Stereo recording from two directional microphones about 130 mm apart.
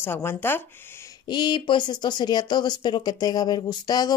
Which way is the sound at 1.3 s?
35° left (ahead or behind).